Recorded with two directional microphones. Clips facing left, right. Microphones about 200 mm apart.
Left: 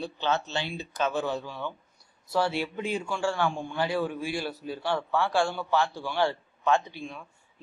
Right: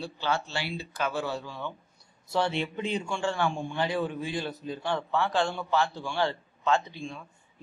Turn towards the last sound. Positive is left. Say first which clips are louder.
# left 1 dB
turn(degrees=15)  # may be behind; listen again after turning